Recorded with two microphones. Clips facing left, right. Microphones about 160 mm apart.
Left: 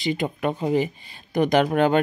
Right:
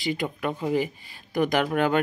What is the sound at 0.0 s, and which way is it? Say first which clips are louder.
Speech: left 3 dB; 25° left (ahead or behind).